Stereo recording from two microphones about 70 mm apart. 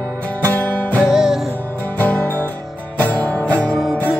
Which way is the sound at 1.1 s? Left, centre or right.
Centre.